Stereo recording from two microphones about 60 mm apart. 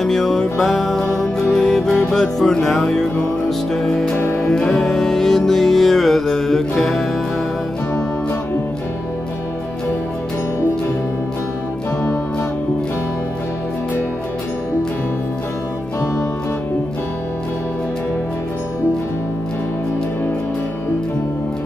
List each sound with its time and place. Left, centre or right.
0.0 s music: centre
4.1 s music: left
4.4 s music: centre